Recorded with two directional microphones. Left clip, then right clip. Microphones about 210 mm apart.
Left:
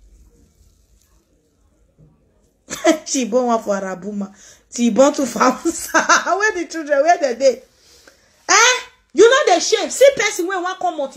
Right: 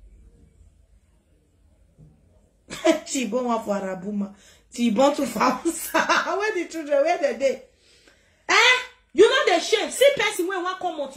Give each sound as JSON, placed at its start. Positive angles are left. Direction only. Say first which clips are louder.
{"t": 2.7, "sound": "speech", "louder": "left 5 dB", "side_deg": 20}
{"t": 8.0, "sound": "babbling", "louder": "left 8 dB", "side_deg": 20}
{"t": 9.4, "sound": "speech", "louder": "left 5 dB", "side_deg": 20}